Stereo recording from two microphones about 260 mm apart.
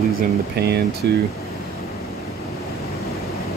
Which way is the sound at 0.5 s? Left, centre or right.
Right.